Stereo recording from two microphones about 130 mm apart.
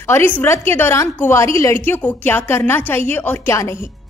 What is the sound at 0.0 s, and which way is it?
A woman's voice, 20° left (ahead or behind).